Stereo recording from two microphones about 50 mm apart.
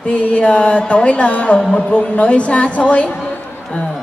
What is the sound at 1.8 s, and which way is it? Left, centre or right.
A woman's voice, left.